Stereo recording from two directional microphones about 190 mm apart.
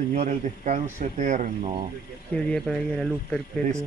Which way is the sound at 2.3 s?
5° left (ahead or behind).